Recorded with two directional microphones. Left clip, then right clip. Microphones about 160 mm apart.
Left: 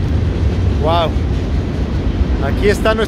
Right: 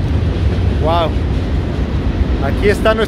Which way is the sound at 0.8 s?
20° left (ahead or behind).